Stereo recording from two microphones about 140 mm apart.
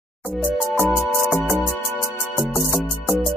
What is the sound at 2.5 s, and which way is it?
Music, 10° left (ahead or behind).